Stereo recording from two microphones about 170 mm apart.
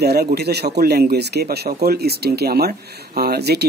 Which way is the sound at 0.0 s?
70° right (ahead or behind).